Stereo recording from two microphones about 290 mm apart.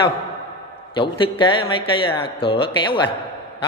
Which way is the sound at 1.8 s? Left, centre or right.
Centre.